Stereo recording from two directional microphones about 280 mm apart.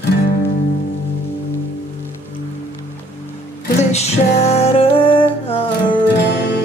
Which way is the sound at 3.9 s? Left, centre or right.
Left.